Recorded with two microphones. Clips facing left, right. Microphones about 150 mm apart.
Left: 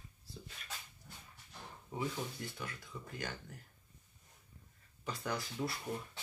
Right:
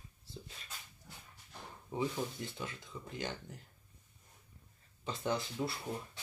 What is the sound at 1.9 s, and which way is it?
Speech, 25° right (ahead or behind).